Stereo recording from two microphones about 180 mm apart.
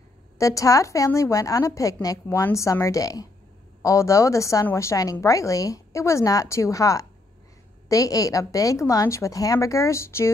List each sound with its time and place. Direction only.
0.4 s a woman's voice: 20° left (ahead or behind)